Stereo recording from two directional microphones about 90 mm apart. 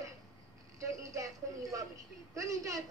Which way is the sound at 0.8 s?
35° right (ahead or behind).